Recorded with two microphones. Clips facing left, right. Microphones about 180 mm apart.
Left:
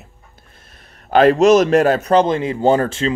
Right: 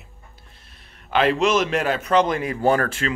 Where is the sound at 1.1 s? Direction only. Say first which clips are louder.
Left 8 dB; 45° left (ahead or behind).